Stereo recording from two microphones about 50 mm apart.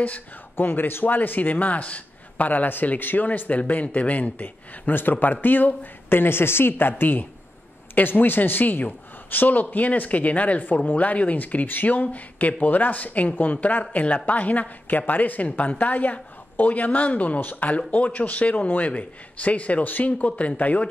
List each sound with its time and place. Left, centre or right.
0.0 s a woman's voice: left